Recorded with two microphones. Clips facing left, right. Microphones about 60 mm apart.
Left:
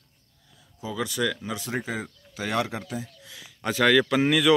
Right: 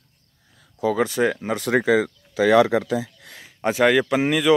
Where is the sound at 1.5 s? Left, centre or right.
Right.